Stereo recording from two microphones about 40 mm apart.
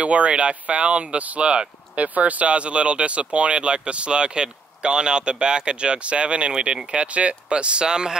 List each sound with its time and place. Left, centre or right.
0.0 s speech: right
2.0 s speech: right; by 8.2 s centre